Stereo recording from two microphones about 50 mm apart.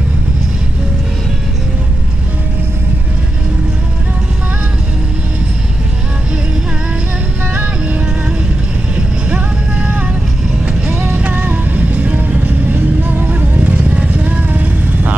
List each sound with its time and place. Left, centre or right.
7.5 s vehicle: right